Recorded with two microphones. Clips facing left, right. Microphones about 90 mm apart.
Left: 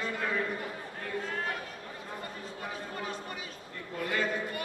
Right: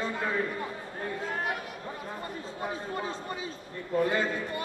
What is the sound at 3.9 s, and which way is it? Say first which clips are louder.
Speech: right 5 dB; 25° right (ahead or behind).